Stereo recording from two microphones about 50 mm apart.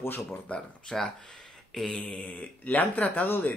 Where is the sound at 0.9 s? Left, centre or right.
Centre.